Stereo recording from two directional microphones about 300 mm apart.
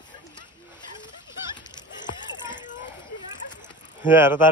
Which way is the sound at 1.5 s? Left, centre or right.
Centre.